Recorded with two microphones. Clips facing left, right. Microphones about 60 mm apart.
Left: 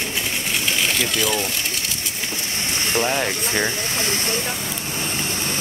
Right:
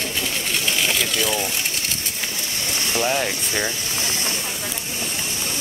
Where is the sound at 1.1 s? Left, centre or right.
Centre.